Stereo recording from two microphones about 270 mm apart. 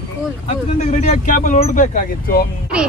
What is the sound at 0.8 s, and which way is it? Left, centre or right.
Speech, left.